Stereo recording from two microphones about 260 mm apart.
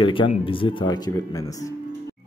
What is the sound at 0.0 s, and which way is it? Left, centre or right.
A man's voice, centre.